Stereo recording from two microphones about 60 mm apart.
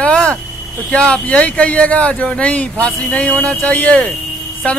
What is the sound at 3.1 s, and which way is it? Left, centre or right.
Speech, left.